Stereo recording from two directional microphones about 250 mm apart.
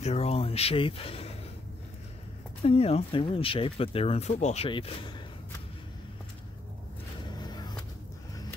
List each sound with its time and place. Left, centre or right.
0.0 s a sound: left
2.6 s speech: left
7.2 s vehicle: centre